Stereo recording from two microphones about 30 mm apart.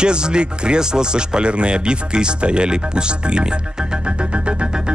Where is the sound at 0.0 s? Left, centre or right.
Right.